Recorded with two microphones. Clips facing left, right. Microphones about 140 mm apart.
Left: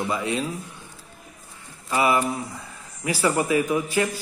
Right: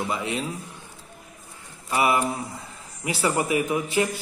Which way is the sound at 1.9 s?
25° right (ahead or behind).